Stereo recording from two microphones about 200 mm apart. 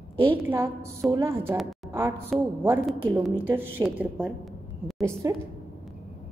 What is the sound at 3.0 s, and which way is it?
A woman's voice, 10° right (ahead or behind).